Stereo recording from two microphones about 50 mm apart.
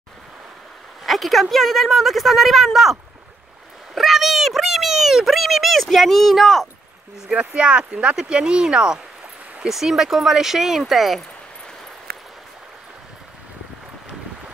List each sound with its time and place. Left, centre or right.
1.0 s a woman's voice: centre
7.2 s a woman's voice: centre